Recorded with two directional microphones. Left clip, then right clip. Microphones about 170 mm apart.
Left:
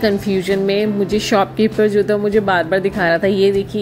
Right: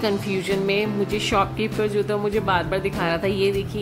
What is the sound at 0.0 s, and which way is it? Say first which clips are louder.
Speech: left 7 dB; 20° left (ahead or behind).